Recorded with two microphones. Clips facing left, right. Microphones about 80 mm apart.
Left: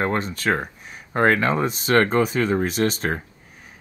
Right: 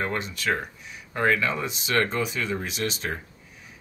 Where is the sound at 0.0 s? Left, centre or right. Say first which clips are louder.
Left 5 dB; left.